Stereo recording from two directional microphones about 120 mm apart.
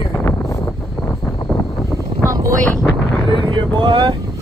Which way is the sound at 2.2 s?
25° right (ahead or behind).